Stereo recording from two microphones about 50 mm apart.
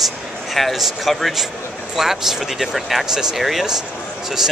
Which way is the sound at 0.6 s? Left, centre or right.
Centre.